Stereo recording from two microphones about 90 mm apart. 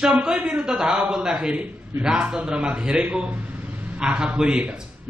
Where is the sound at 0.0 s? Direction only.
10° right (ahead or behind).